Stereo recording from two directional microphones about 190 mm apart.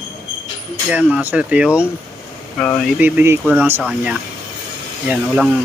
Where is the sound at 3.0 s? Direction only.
10° right (ahead or behind).